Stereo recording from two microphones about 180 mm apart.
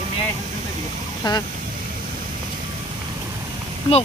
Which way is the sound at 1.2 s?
25° left (ahead or behind).